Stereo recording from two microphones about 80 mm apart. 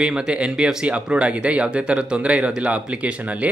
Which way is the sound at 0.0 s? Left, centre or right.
Centre.